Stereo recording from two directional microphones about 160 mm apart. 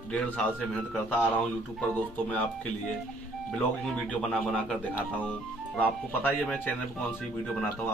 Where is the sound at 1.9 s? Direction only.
10° left (ahead or behind).